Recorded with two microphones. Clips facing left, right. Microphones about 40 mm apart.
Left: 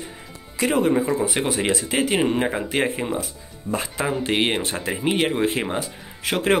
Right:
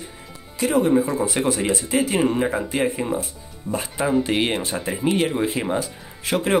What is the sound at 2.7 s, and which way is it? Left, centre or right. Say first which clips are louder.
Speech: even; left.